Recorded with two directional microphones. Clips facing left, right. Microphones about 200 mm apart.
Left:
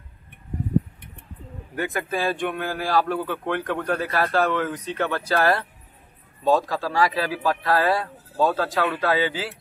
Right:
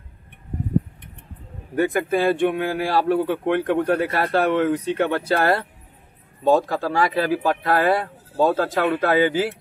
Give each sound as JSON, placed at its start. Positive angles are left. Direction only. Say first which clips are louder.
{"t": 1.8, "sound": "a man's voice", "louder": "right 6 dB", "side_deg": -25}